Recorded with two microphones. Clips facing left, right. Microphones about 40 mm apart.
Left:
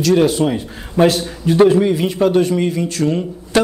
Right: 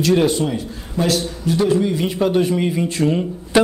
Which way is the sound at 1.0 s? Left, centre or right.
Left.